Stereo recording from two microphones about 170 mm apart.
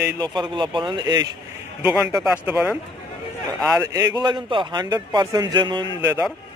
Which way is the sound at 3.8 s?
20° right (ahead or behind).